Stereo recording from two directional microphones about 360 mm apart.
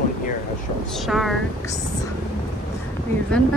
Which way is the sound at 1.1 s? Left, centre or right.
Centre.